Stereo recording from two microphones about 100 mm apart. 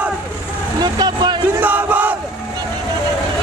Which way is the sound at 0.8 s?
45° right (ahead or behind).